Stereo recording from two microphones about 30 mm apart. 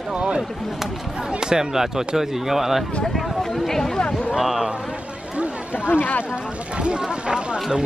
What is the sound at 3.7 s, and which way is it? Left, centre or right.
Speech, centre.